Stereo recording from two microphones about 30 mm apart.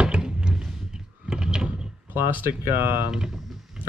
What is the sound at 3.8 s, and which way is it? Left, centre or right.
Pig, centre.